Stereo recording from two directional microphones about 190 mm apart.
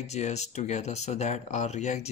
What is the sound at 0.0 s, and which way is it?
Speech, 35° left (ahead or behind).